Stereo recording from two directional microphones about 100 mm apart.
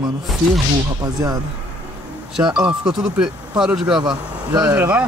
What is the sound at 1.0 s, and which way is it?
Speech, 40° right (ahead or behind).